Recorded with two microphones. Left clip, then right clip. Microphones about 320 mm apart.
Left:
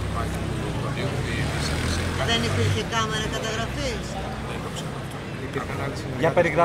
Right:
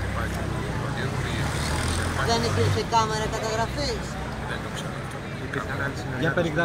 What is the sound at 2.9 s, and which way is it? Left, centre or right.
Speech, centre.